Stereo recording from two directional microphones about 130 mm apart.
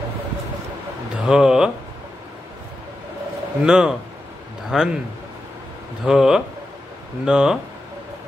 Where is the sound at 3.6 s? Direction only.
5° right (ahead or behind).